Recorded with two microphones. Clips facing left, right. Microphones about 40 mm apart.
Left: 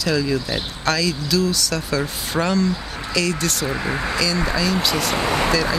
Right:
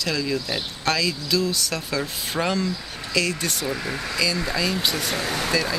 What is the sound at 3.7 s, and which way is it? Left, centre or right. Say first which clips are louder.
Speech: left 4 dB; left.